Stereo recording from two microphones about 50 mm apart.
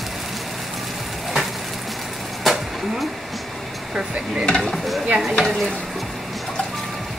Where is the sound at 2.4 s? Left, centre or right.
Centre.